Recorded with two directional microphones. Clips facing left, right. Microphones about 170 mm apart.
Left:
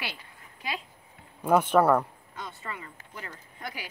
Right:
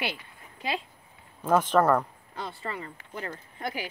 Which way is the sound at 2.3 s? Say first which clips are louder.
Right 4 dB; 35° right (ahead or behind).